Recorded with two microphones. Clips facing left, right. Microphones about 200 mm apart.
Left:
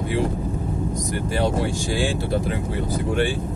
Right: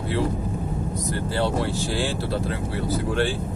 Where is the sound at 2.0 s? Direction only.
15° left (ahead or behind).